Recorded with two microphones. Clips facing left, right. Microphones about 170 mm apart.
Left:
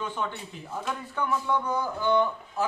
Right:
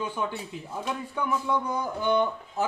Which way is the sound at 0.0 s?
10° right (ahead or behind).